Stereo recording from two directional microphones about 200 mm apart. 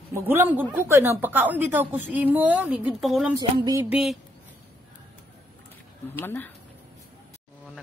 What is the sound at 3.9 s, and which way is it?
Speech, 5° right (ahead or behind).